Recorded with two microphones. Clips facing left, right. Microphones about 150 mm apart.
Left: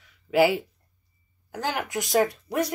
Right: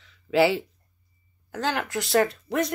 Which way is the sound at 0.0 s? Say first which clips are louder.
Even; 10° left (ahead or behind).